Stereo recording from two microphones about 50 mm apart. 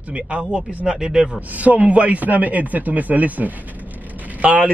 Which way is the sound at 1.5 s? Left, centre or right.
Right.